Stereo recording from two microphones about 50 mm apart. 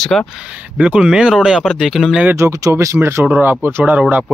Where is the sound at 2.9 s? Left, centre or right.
Right.